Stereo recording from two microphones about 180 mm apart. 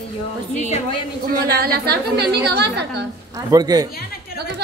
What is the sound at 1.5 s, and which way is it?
A woman's voice, 60° right (ahead or behind).